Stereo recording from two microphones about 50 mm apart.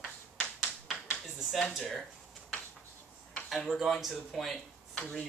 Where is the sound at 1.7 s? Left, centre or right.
Centre.